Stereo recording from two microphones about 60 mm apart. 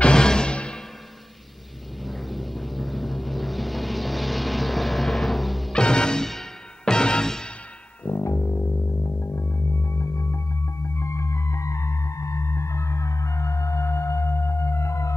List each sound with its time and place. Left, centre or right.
0.0 s music: centre
2.0 s vehicle: centre
5.7 s music: centre
8.2 s music: left